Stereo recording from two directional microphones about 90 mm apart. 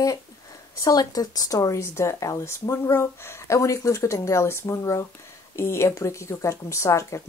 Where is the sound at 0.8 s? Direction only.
45° left (ahead or behind).